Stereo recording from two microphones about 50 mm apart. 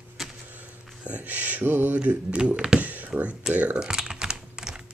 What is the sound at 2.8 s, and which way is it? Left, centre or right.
Speech, right.